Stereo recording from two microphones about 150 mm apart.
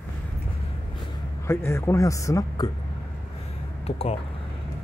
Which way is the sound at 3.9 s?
45° left (ahead or behind).